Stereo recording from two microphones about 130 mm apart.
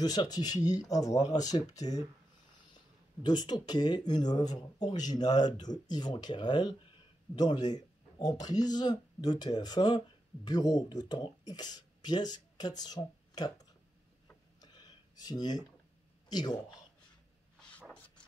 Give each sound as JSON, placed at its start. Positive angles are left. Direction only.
{"t": 0.0, "sound": "speech", "side_deg": 30}
{"t": 14.6, "sound": "a sound", "side_deg": 30}
{"t": 16.3, "sound": "speech", "side_deg": 30}